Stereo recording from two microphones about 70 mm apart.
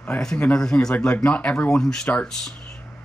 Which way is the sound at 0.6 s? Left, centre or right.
Centre.